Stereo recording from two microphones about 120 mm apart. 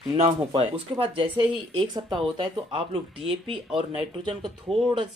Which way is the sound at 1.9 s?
35° right (ahead or behind).